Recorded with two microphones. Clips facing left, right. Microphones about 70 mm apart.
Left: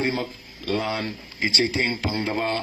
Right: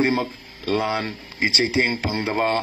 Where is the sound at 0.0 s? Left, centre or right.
Right.